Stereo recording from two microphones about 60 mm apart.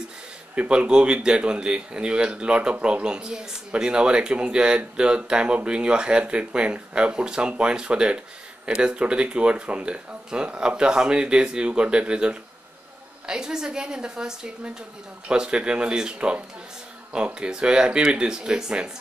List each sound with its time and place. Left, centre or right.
0.6 s speech: centre